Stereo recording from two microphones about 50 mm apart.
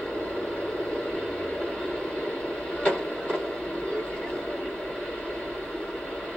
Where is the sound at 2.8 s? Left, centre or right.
Left.